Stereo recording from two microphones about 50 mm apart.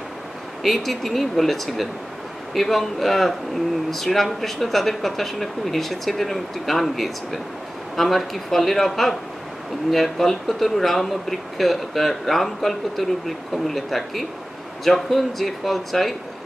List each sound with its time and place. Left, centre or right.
0.7 s speech: centre